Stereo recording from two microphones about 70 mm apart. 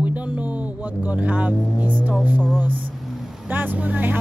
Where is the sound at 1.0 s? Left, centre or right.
Centre.